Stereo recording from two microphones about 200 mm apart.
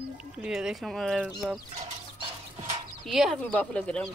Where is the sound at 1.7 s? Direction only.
35° right (ahead or behind).